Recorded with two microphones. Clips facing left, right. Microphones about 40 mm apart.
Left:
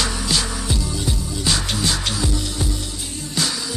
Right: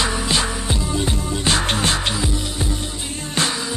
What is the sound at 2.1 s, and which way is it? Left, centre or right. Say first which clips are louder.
Music: right 1 dB; right.